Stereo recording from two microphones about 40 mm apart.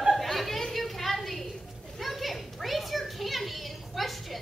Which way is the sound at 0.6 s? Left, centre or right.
Centre.